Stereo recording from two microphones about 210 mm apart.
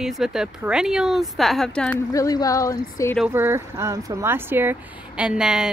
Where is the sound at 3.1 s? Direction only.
5° right (ahead or behind).